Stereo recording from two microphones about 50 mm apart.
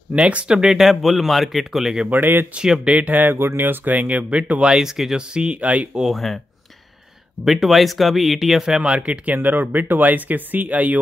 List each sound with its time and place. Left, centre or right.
0.1 s speech: right
0.5 s speech: centre
2.0 s speech: right
2.5 s speech: centre
2.9 s speech: right
4.8 s speech: centre
5.2 s speech: centre
6.0 s speech: centre
7.4 s speech: centre
8.8 s speech: right